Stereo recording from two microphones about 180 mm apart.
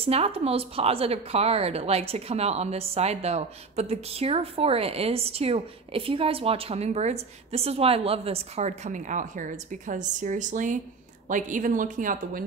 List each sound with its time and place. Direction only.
0.0 s speech: 35° right (ahead or behind); by 12.4 s 50° right (ahead or behind)